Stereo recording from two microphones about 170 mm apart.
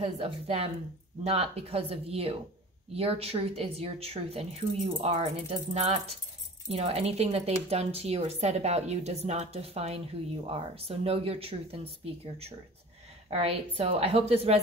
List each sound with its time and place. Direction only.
0.0 s a woman's voice: 35° right (ahead or behind)